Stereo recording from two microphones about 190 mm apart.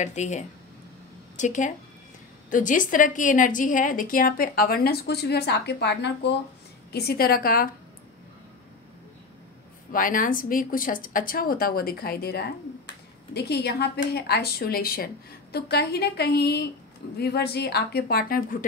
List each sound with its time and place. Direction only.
0.0 s a woman's voice: 40° left (ahead or behind)
9.9 s a woman's voice: 45° left (ahead or behind)